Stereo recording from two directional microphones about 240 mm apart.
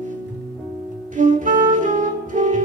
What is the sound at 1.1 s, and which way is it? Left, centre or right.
Saxophone, right.